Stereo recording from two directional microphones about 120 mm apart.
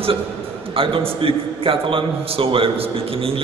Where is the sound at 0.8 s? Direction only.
50° right (ahead or behind).